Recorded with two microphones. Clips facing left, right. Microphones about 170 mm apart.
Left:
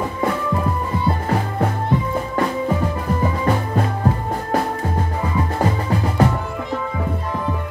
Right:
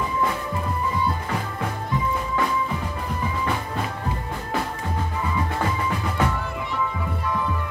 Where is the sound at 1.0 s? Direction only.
60° left (ahead or behind).